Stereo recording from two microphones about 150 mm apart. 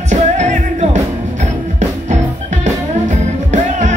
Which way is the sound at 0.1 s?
50° right (ahead or behind).